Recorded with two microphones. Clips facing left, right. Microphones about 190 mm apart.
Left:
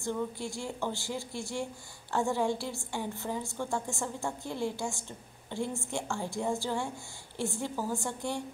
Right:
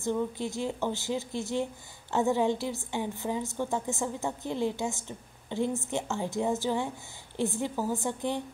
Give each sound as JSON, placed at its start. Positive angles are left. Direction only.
{"t": 0.0, "sound": "a woman's voice", "side_deg": -20}